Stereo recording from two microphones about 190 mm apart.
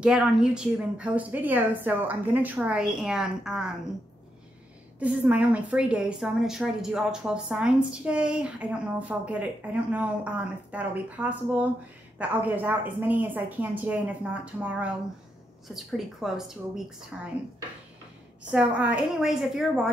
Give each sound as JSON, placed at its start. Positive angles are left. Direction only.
{"t": 0.0, "sound": "a woman's voice", "side_deg": -5}
{"t": 5.0, "sound": "a woman's voice", "side_deg": -5}
{"t": 18.5, "sound": "a woman's voice", "side_deg": -5}